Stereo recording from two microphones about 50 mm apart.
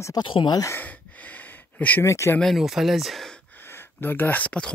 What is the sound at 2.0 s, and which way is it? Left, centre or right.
Speech, left.